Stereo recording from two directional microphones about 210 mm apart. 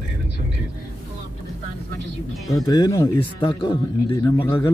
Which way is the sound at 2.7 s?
20° left (ahead or behind).